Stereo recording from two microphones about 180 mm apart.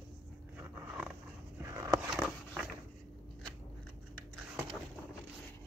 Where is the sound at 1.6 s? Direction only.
15° right (ahead or behind).